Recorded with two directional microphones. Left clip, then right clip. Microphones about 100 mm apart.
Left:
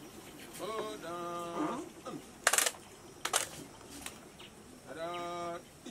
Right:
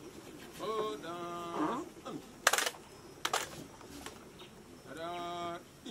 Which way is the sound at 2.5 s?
20° right (ahead or behind).